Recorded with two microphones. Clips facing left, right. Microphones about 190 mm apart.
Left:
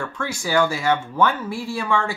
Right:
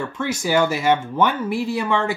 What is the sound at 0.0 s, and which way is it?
Speech, 20° right (ahead or behind).